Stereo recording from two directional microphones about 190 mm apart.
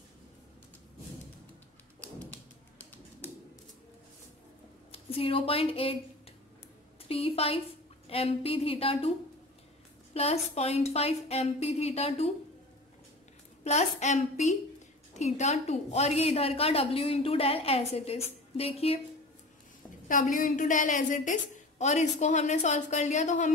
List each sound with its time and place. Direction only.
2.8 s typewriter: 10° left (ahead or behind)
4.9 s speech: 30° left (ahead or behind)
7.1 s a woman's voice: 30° left (ahead or behind)
10.1 s a woman's voice: 35° left (ahead or behind)
13.7 s a woman's voice: 35° left (ahead or behind)
20.1 s a woman's voice: 45° left (ahead or behind)